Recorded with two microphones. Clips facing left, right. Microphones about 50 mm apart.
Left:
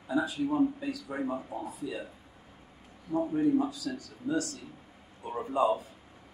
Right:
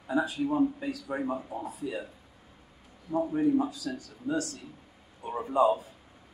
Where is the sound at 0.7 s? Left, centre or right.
Right.